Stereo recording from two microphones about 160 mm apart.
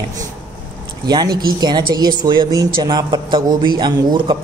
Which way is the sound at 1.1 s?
25° right (ahead or behind).